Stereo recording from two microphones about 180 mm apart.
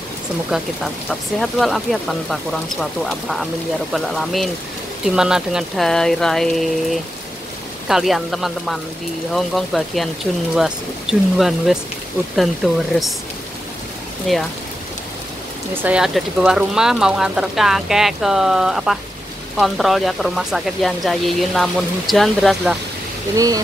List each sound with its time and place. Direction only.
1.0 s speech: centre (ahead or behind)
14.3 s speech: centre (ahead or behind)
15.7 s speech: 10° right (ahead or behind)
23.3 s speech: 20° right (ahead or behind)